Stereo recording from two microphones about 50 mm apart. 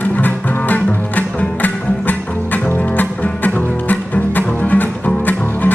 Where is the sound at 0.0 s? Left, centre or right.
Left.